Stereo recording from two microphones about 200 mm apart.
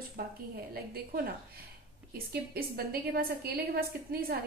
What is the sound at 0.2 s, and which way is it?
Speech, 50° right (ahead or behind).